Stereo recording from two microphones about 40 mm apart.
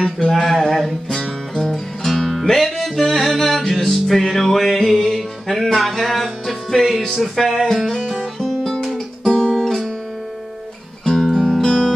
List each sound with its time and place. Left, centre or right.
0.0 s a sound: centre
0.5 s a sound: centre
1.5 s music: centre
7.9 s music: centre
11.2 s music: centre
11.5 s music: centre